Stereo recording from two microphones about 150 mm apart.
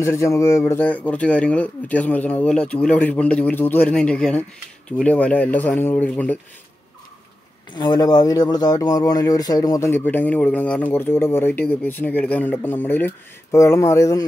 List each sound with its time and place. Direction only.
0.0 s speech: 20° left (ahead or behind)
7.7 s speech: 30° left (ahead or behind)